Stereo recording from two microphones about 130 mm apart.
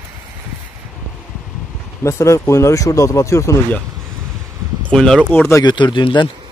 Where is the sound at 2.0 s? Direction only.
20° left (ahead or behind).